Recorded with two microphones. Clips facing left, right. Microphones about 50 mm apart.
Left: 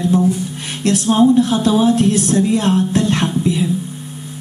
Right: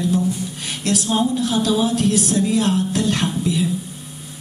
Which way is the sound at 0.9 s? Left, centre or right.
Left.